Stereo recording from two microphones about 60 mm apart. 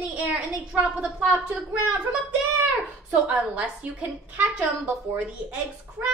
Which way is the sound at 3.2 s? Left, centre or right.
Right.